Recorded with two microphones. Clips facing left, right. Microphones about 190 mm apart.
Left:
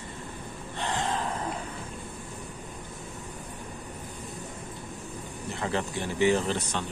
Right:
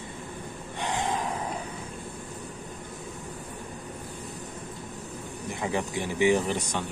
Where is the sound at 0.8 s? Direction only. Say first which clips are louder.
Right 1 dB; 15° right (ahead or behind).